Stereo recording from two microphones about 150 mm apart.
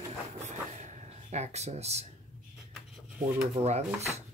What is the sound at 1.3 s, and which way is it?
Speech, 50° right (ahead or behind).